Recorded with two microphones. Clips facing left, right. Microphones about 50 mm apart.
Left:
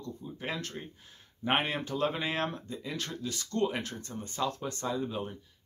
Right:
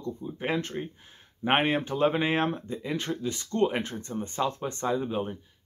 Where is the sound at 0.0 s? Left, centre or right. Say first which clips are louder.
Right 6 dB; right.